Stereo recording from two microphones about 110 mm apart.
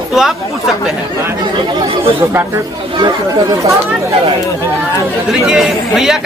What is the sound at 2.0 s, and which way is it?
Speech, 20° right (ahead or behind).